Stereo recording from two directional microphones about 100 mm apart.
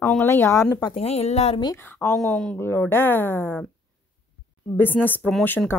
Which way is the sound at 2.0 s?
20° left (ahead or behind).